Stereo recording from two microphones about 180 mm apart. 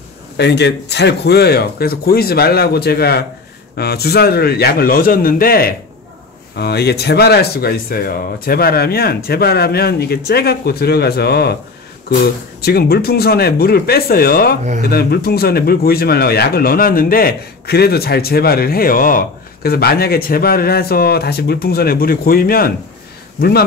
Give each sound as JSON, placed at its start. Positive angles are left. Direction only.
{"t": 0.4, "sound": "speech", "side_deg": 70}
{"t": 12.6, "sound": "speech", "side_deg": 60}